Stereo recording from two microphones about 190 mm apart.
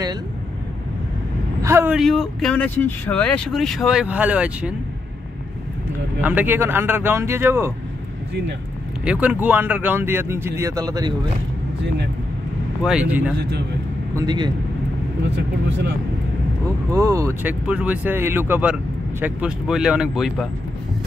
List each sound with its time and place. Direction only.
1.6 s vehicle: 15° right (ahead or behind)
2.0 s speech: centre (ahead or behind)
6.2 s speech: 10° right (ahead or behind)
9.0 s speech: 5° right (ahead or behind)
12.8 s speech: 5° right (ahead or behind)
13.4 s speech: 65° right (ahead or behind)
14.1 s speech: 20° right (ahead or behind)
15.2 s speech: 65° right (ahead or behind)
16.9 s speech: 15° right (ahead or behind)